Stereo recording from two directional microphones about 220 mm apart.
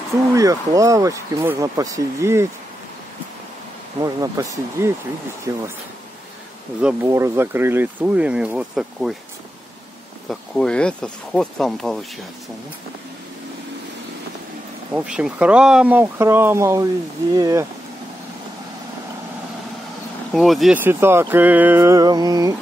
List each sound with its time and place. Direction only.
0.3 s speech: 15° right (ahead or behind)
4.0 s speech: 15° right (ahead or behind)
6.8 s speech: 5° right (ahead or behind)
10.5 s speech: 5° left (ahead or behind)
14.9 s speech: 5° right (ahead or behind)
20.3 s speech: centre (ahead or behind); by 22.6 s 15° right (ahead or behind)